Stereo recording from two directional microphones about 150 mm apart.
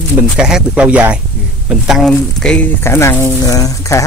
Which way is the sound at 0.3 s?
5° right (ahead or behind).